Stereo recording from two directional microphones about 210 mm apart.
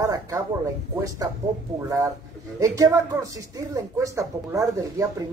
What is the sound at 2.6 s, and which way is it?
Speech, 15° right (ahead or behind).